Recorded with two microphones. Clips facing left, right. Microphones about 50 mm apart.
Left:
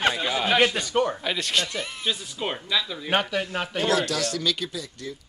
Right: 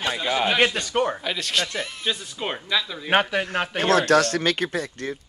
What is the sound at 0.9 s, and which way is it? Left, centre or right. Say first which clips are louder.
Speech: even; right.